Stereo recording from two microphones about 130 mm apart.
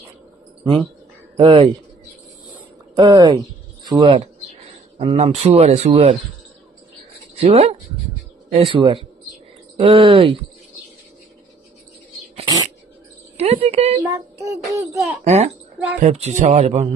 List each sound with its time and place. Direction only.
1.3 s speech: 45° right (ahead or behind)
3.0 s speech: 35° right (ahead or behind)
4.9 s a man's voice: 50° right (ahead or behind)
7.3 s speech: 50° right (ahead or behind)
13.4 s a woman's voice: 50° right (ahead or behind)
14.0 s a child's voice: 25° right (ahead or behind)
15.2 s a man's voice: 60° right (ahead or behind)